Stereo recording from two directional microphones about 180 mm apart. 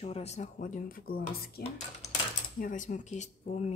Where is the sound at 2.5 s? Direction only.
45° left (ahead or behind).